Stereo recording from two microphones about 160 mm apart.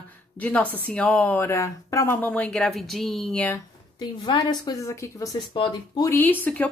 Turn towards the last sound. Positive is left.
turn(degrees=10)  # may be behind; listen again after turning